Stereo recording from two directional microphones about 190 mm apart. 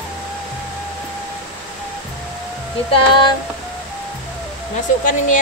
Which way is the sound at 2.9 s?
25° left (ahead or behind).